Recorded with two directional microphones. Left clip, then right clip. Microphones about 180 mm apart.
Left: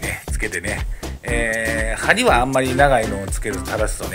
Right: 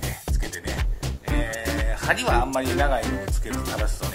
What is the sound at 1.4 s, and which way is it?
Speech, 25° left (ahead or behind).